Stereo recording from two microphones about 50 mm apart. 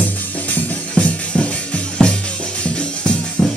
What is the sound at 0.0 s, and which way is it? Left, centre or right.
Music, left.